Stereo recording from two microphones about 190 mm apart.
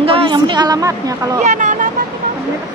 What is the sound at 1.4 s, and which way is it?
Vehicle, 40° right (ahead or behind).